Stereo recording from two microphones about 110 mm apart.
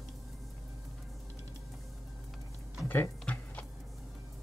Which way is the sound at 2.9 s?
15° left (ahead or behind).